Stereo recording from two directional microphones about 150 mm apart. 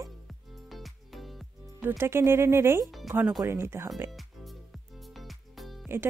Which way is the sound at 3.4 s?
15° right (ahead or behind).